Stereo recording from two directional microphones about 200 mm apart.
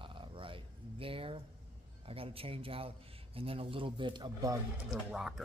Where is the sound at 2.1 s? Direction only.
30° right (ahead or behind).